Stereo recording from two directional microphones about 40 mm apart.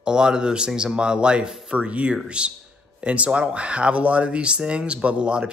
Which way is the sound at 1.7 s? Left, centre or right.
Right.